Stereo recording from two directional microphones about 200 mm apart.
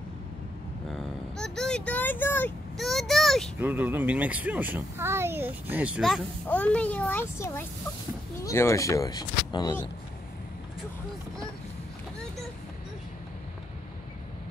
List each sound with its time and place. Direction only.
0.8 s vehicle: 5° left (ahead or behind)
3.5 s speech: 10° right (ahead or behind); by 9.8 s 20° left (ahead or behind)